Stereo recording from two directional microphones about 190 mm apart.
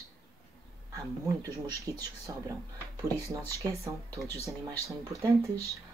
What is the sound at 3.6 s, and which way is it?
Speech, 15° right (ahead or behind).